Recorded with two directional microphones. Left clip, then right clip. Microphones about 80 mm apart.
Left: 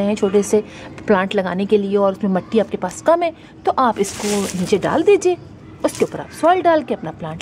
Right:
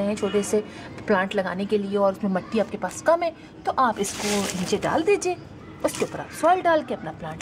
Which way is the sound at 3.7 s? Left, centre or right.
Centre.